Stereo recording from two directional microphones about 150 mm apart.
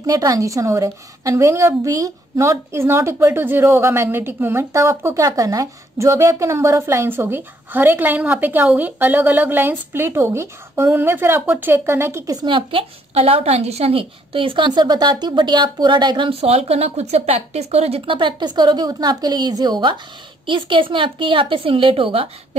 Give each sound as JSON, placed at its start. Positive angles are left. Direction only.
{"t": 0.0, "sound": "a woman's voice", "side_deg": -25}
{"t": 12.4, "sound": "a woman's voice", "side_deg": -35}